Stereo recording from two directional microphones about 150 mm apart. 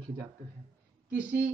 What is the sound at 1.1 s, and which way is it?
Speech, 10° right (ahead or behind).